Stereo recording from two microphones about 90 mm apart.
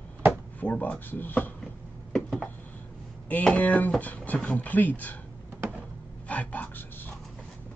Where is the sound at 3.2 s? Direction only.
15° left (ahead or behind).